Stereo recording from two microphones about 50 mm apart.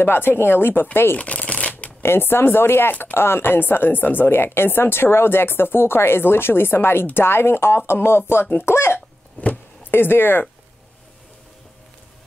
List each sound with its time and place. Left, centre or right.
0.0 s speech: left
1.1 s shuffling cards: left
2.0 s speech: left
2.9 s speech: left
3.2 s speech: left
9.4 s a sound: left
9.8 s speech: left